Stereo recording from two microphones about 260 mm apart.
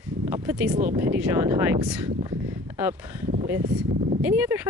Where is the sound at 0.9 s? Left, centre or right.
Centre.